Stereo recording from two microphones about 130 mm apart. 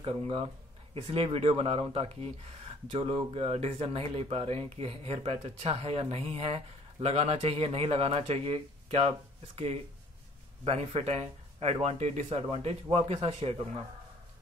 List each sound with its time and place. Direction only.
0.0 s speech: 45° right (ahead or behind)
10.6 s speech: 50° right (ahead or behind)